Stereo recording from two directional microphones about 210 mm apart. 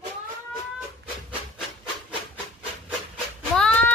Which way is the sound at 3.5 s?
5° left (ahead or behind).